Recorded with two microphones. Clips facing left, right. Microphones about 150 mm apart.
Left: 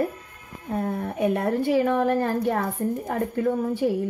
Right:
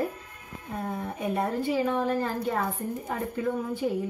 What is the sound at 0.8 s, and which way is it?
A woman's voice, 60° left (ahead or behind).